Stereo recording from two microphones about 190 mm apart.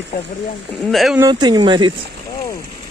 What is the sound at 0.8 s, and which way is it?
Speech, centre (ahead or behind).